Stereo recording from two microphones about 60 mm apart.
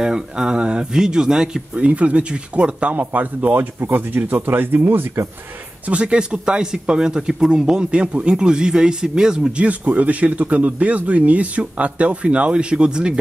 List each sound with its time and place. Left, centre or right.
0.0 s speech: centre; by 5.2 s right
5.9 s speech: centre